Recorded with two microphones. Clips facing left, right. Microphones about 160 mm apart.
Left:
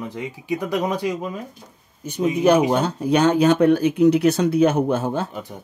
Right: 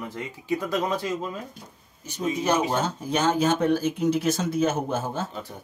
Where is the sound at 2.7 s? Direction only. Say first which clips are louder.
Left 7 dB; 65° left (ahead or behind).